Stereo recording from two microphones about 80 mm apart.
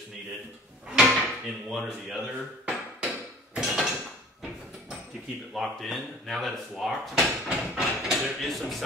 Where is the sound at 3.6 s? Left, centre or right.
Centre.